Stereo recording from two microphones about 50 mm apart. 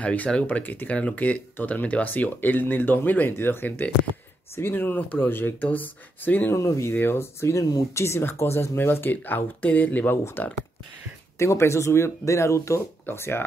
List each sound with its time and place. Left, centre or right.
0.0 s speech: left
6.5 s speech: left
6.9 s speech: left
11.3 s speech: left
13.1 s speech: left